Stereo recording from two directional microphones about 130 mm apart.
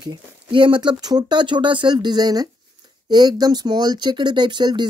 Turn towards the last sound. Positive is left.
turn(degrees=-35)  # may be behind; listen again after turning